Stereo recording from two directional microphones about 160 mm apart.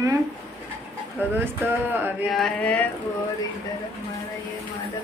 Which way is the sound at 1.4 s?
10° right (ahead or behind).